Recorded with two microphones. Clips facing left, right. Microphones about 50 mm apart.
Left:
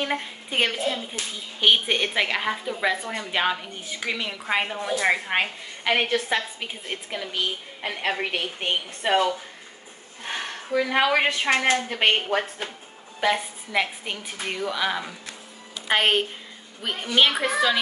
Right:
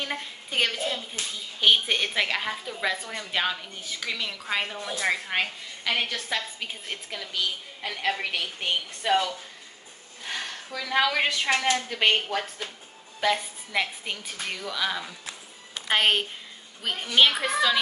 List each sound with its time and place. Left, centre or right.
0.0 s a woman's voice: centre
6.6 s a woman's voice: centre
13.2 s a woman's voice: centre